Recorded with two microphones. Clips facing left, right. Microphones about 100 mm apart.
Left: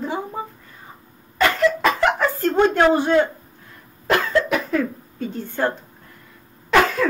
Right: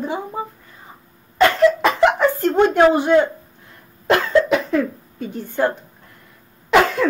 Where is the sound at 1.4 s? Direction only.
20° right (ahead or behind).